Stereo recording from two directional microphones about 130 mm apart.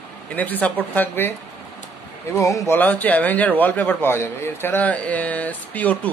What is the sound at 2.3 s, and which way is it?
Speech, 25° left (ahead or behind).